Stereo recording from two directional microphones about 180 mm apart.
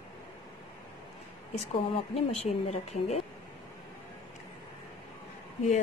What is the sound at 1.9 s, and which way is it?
Speech, 35° left (ahead or behind).